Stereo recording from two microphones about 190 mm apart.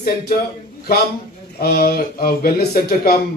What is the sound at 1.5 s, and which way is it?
Speech, 55° left (ahead or behind).